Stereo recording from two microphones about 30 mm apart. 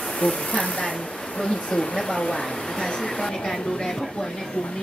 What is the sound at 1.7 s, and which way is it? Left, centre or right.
Speech, left.